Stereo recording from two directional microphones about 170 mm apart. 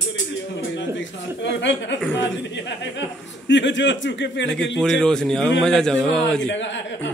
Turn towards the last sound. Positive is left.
turn(degrees=90)